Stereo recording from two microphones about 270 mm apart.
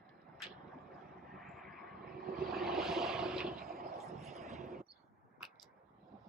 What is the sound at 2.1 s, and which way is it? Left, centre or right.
Vehicle, right.